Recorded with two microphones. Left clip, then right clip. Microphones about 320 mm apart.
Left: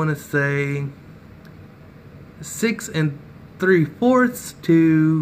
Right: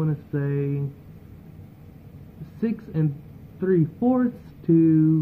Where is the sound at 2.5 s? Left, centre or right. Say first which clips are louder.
Left 6 dB; centre.